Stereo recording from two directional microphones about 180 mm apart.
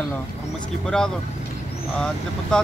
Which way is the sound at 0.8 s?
5° left (ahead or behind).